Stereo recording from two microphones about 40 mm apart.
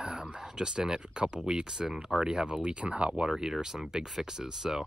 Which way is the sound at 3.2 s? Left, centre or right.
Centre.